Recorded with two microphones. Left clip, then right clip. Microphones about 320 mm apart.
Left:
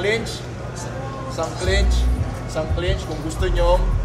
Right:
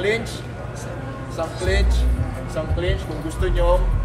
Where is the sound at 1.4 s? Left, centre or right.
Centre.